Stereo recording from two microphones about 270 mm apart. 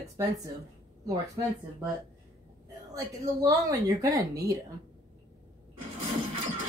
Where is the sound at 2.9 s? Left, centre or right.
Centre.